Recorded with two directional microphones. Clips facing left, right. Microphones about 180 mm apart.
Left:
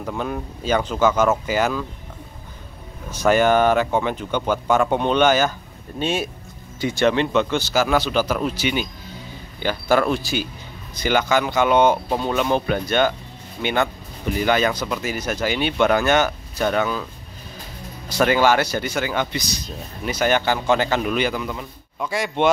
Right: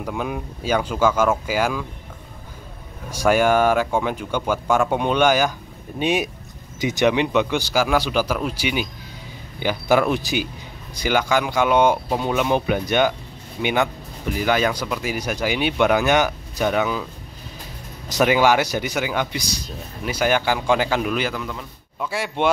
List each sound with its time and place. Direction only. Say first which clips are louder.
0.0 s speech: even; 10° right (ahead or behind)
3.1 s speech: left 1 dB; 10° right (ahead or behind)
18.1 s speech: even; 15° right (ahead or behind); by 21.6 s 5° left (ahead or behind)
22.0 s speech: left 2 dB; 5° right (ahead or behind)